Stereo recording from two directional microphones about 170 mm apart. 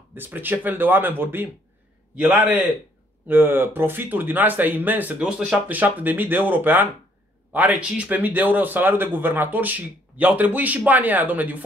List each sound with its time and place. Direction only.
0.1 s speech: 10° right (ahead or behind)